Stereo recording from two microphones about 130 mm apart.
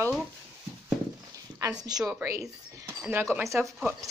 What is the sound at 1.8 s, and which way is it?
Speech, 30° right (ahead or behind).